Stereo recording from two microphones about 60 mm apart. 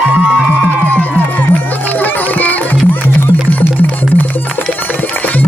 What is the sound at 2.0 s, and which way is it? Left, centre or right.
Music, left.